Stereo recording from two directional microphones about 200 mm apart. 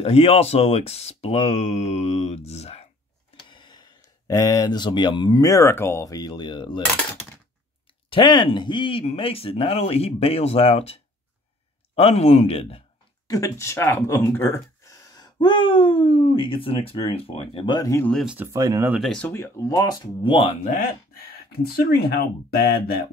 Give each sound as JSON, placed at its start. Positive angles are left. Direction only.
{"t": 0.0, "sound": "speech", "side_deg": 30}
{"t": 8.1, "sound": "speech", "side_deg": 25}
{"t": 13.3, "sound": "speech", "side_deg": 15}
{"t": 18.1, "sound": "speech", "side_deg": -5}
{"t": 18.9, "sound": "speech", "side_deg": 5}
{"t": 21.3, "sound": "speech", "side_deg": 50}